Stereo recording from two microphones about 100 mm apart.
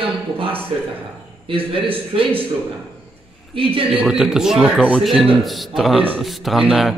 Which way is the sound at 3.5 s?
65° right (ahead or behind).